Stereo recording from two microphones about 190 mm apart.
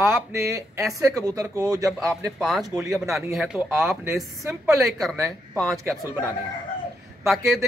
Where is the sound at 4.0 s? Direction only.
15° right (ahead or behind).